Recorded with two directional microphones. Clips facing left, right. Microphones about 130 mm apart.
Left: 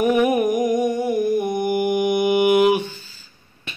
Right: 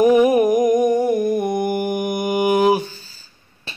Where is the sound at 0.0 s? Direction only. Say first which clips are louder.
Right 4 dB; 35° right (ahead or behind).